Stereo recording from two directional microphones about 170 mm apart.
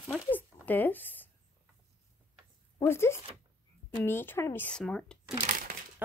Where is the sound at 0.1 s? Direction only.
10° left (ahead or behind).